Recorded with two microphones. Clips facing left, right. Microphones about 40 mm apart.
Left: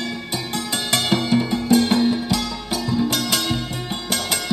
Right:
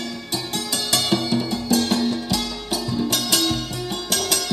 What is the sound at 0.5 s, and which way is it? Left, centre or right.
Music, left.